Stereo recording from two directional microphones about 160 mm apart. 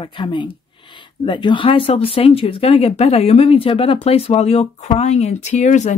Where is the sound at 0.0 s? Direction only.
30° left (ahead or behind).